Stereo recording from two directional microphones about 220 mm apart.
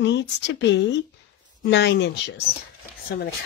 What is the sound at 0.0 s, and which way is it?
Speech, 55° left (ahead or behind).